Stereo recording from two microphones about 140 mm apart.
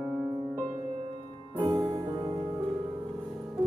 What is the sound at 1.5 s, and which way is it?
Music, 35° right (ahead or behind).